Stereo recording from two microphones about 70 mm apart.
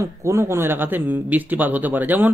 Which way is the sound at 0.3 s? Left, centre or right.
Right.